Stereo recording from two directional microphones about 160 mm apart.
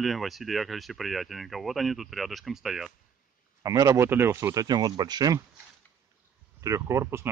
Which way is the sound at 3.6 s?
20° right (ahead or behind).